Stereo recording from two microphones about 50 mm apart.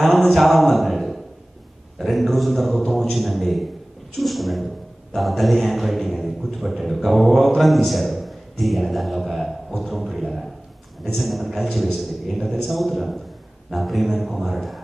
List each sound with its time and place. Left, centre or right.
0.0 s a man's voice: centre